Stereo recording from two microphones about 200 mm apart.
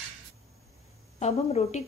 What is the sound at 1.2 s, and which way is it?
Speech, 35° left (ahead or behind).